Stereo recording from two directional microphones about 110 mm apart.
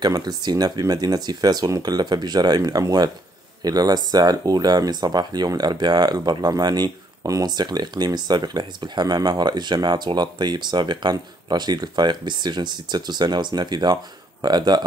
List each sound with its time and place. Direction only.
0.0 s speech: 40° right (ahead or behind)